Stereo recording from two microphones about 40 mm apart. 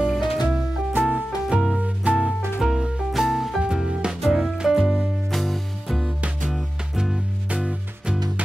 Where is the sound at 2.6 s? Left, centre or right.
Centre.